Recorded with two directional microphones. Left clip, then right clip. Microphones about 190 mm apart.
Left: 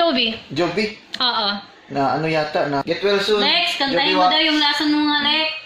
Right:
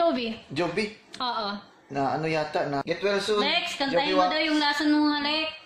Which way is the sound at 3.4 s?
50° right (ahead or behind).